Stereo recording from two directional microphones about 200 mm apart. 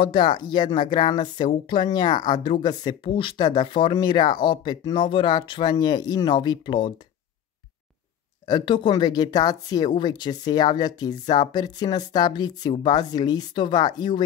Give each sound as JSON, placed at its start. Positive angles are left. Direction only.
{"t": 0.0, "sound": "speech", "side_deg": 25}
{"t": 8.5, "sound": "speech", "side_deg": 20}